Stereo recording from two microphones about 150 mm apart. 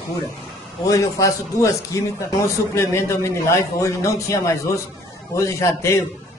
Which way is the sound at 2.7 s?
20° left (ahead or behind).